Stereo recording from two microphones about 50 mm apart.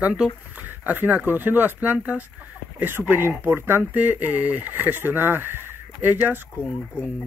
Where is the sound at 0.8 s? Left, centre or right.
Right.